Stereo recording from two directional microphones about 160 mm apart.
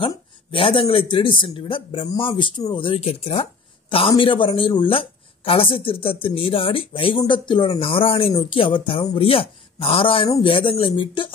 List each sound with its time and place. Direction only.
0.0 s speech: 35° left (ahead or behind)